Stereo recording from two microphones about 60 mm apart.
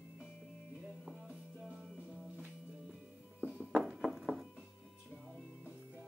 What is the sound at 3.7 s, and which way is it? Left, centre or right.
Horse, centre.